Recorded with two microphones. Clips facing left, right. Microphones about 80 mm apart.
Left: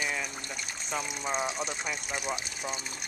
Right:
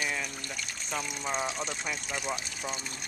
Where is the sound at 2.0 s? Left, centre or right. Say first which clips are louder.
Even; centre.